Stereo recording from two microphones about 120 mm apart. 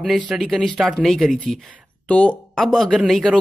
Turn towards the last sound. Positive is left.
turn(degrees=0)  # may be behind; listen again after turning